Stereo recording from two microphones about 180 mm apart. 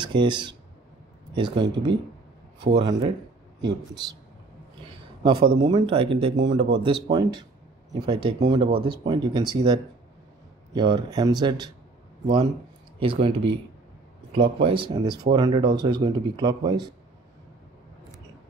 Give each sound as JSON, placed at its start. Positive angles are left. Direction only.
{"t": 0.0, "sound": "speech", "side_deg": -25}
{"t": 4.8, "sound": "speech", "side_deg": -25}
{"t": 13.0, "sound": "speech", "side_deg": -30}